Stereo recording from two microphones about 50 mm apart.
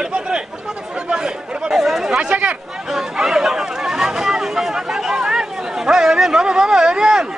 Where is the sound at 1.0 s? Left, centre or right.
Centre.